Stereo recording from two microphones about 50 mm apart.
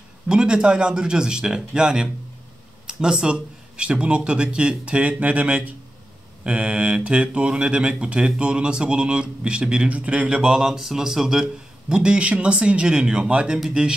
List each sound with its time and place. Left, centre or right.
0.3 s a man's voice: centre
11.9 s a man's voice: right